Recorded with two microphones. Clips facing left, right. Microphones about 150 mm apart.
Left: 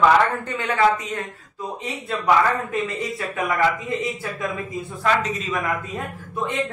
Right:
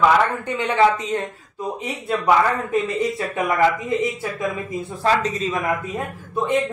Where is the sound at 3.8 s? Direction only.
25° right (ahead or behind).